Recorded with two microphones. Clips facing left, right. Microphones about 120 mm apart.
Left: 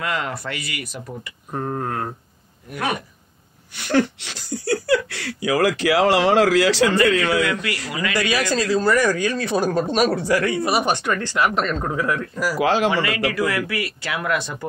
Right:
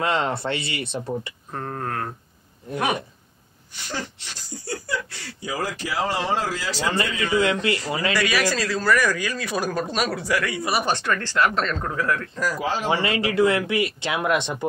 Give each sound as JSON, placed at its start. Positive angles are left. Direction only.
{"t": 0.0, "sound": "speech", "side_deg": -25}
{"t": 1.5, "sound": "speech", "side_deg": 15}
{"t": 3.7, "sound": "a man's voice", "side_deg": 75}
{"t": 7.4, "sound": "speech", "side_deg": -25}
{"t": 8.1, "sound": "a man's voice", "side_deg": 20}
{"t": 12.5, "sound": "a man's voice", "side_deg": 85}
{"t": 12.9, "sound": "speech", "side_deg": -25}